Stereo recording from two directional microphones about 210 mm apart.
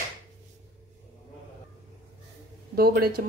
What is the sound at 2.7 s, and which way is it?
Speech, 45° right (ahead or behind).